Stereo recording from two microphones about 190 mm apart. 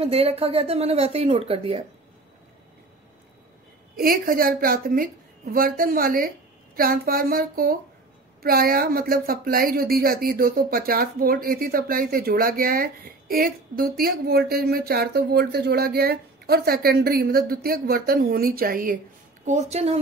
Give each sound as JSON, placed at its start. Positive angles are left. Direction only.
{"t": 0.0, "sound": "speech", "side_deg": -30}
{"t": 4.0, "sound": "speech", "side_deg": -50}
{"t": 19.4, "sound": "speech", "side_deg": -35}